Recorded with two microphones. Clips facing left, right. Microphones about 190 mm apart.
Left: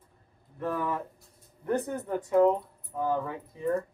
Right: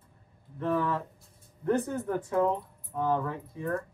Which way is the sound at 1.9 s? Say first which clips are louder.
Left 2 dB; 15° left (ahead or behind).